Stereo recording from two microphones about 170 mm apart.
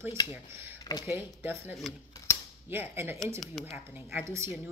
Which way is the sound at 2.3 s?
15° left (ahead or behind).